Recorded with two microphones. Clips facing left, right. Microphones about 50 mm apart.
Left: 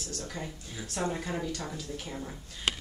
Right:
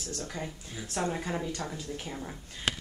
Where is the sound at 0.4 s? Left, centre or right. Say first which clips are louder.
Right 1 dB; centre.